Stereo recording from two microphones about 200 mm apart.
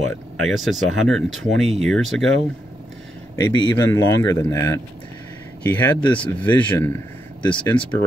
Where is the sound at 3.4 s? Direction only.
20° left (ahead or behind).